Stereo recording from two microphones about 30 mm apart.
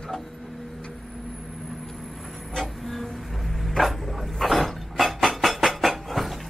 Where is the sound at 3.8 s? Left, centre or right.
Centre.